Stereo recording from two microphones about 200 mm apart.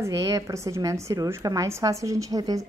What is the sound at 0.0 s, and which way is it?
A woman's voice, 15° right (ahead or behind).